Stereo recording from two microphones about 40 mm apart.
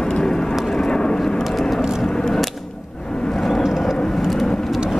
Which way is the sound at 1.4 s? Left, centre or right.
Centre.